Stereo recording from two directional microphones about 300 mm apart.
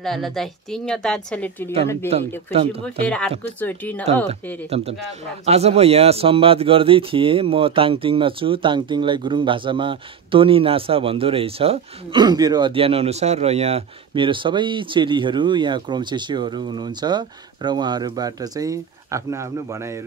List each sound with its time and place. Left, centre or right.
0.0 s a woman's voice: centre
2.1 s speech: right
3.1 s a woman's voice: centre
4.0 s speech: right